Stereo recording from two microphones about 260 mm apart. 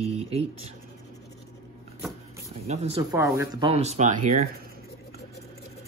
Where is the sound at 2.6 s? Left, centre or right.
Right.